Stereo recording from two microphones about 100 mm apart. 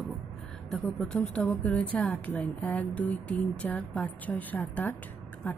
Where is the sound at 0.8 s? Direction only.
10° left (ahead or behind).